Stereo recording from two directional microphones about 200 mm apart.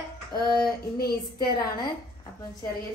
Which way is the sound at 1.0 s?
50° left (ahead or behind).